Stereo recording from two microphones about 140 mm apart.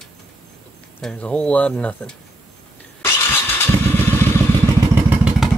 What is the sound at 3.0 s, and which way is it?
Vehicle, 15° left (ahead or behind).